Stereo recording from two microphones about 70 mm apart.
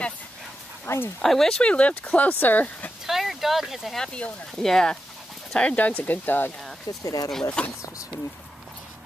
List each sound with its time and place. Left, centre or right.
0.8 s speech: left
1.2 s speech: centre; by 2.9 s left
3.1 s a sound: centre
4.0 s speech: centre
6.9 s speech: left
7.6 s speech: centre